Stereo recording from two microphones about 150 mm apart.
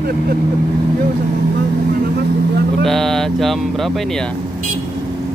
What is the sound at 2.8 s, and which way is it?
Speech, centre (ahead or behind).